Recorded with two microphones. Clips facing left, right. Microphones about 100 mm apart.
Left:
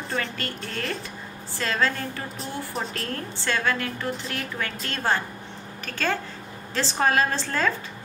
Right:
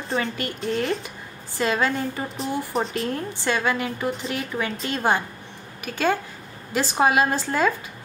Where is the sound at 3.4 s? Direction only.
15° right (ahead or behind).